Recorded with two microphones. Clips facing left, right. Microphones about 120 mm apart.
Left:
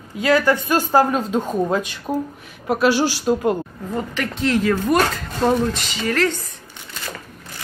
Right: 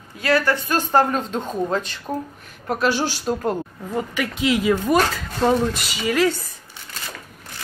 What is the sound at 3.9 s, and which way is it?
Speech, 10° right (ahead or behind).